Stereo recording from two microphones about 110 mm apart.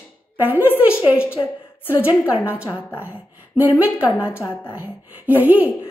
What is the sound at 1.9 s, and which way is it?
Speech, 15° right (ahead or behind).